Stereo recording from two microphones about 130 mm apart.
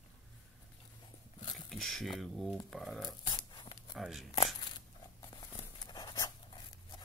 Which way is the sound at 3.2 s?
35° left (ahead or behind).